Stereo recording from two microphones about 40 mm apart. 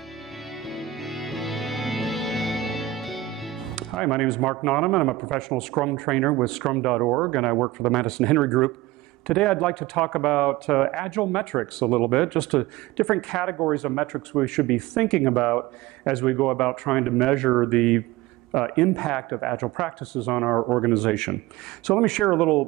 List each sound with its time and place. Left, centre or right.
0.7 s music: centre
3.7 s music: centre
4.3 s speech: centre
8.0 s speech: centre